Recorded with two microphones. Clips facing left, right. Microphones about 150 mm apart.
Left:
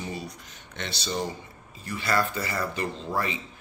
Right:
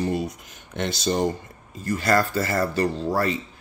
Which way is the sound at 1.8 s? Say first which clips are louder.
Right 6 dB; 45° right (ahead or behind).